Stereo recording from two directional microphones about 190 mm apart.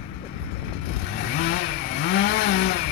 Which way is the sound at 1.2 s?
60° left (ahead or behind).